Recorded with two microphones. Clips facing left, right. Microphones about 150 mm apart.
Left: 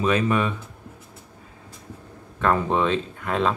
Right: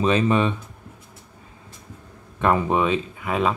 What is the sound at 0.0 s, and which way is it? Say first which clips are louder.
Speech: right 2 dB; 25° right (ahead or behind).